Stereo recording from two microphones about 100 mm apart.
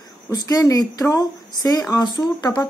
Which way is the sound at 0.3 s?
40° left (ahead or behind).